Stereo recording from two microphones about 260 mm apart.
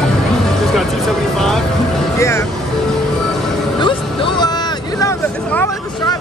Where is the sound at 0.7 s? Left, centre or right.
Centre.